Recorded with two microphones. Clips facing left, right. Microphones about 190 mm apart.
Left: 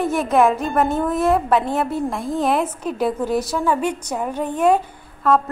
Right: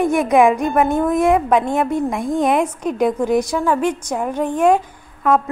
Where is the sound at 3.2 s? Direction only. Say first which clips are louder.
Right 3 dB; 15° right (ahead or behind).